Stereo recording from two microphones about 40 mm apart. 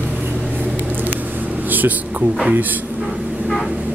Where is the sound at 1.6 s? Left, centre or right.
Right.